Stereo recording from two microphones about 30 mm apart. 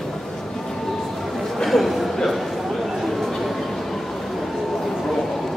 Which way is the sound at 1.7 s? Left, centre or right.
Centre.